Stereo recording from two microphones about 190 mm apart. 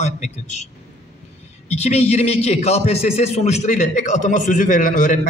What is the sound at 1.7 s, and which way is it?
A man's voice, 35° left (ahead or behind).